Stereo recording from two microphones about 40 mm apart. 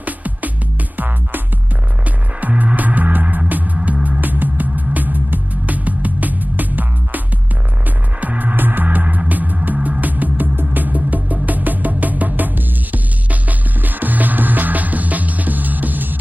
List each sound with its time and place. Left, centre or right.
0.0 s music: right
0.9 s music: right
2.6 s music: right
4.2 s music: right
8.2 s music: right